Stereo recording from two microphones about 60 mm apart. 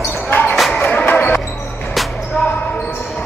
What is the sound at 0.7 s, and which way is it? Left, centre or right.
Music, left.